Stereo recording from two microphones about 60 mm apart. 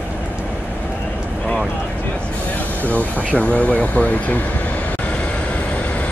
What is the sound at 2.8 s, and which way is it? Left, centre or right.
Speech, left.